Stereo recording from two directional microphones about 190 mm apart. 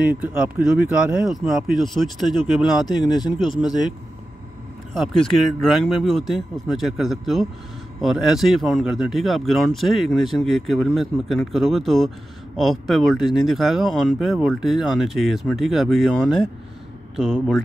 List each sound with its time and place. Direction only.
0.0 s speech: 5° right (ahead or behind)
2.8 s a man's voice: 20° left (ahead or behind)
4.9 s speech: centre (ahead or behind)